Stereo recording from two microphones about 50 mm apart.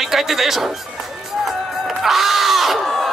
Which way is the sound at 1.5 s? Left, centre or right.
Centre.